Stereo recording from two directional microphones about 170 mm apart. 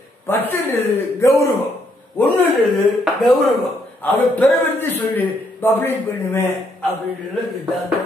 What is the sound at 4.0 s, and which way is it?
A man's voice, 10° left (ahead or behind).